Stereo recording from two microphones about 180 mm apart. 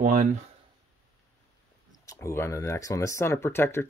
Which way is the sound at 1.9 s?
15° left (ahead or behind).